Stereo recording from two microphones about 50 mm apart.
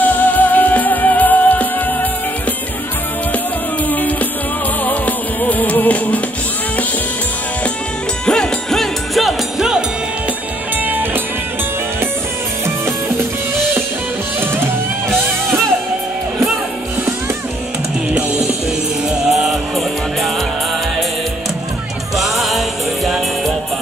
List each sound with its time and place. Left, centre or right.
0.0 s music: left
3.9 s music: left
8.3 s music: centre
10.8 s music: right
19.2 s music: centre
22.1 s music: centre